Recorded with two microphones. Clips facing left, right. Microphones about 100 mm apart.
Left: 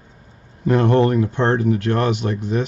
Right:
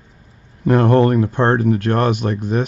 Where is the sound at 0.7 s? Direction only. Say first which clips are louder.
Right 2 dB; 50° right (ahead or behind).